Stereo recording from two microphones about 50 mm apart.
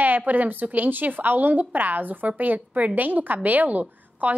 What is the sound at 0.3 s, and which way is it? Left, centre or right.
A woman's voice, right.